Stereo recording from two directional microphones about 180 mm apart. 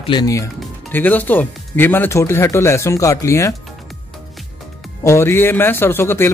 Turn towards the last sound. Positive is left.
turn(degrees=15)  # may be behind; listen again after turning